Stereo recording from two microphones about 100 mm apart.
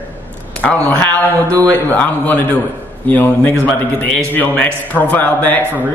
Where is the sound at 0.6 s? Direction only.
15° left (ahead or behind).